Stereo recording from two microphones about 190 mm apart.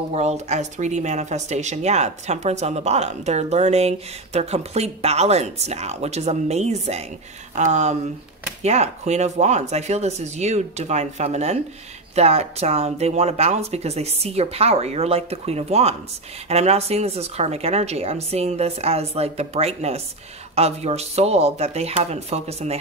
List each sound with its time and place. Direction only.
0.1 s speech: 35° right (ahead or behind)